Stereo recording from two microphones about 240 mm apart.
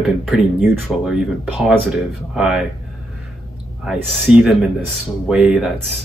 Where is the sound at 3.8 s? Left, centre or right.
Centre.